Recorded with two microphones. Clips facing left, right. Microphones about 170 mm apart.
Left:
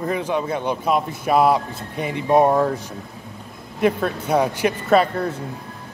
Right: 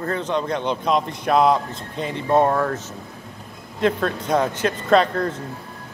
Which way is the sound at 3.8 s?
10° left (ahead or behind).